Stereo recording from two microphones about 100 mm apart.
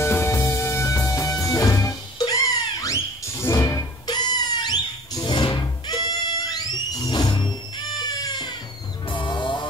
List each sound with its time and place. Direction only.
0.0 s music: 25° left (ahead or behind)
3.6 s music: 45° left (ahead or behind)